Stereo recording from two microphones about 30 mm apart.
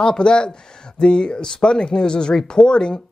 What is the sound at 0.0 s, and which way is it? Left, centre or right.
Speech, left.